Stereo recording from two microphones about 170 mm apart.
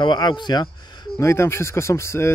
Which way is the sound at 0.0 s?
25° left (ahead or behind).